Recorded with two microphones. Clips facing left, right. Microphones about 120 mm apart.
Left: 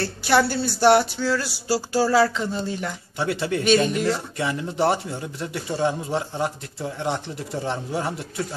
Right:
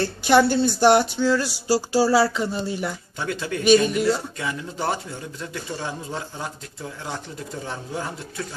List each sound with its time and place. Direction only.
0.0 s speech: 20° right (ahead or behind)
3.2 s speech: 25° left (ahead or behind)